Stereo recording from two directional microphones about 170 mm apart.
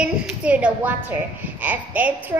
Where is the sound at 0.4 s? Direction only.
5° right (ahead or behind).